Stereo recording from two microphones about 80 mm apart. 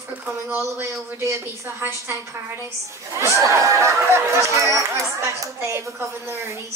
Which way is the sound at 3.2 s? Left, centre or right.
Right.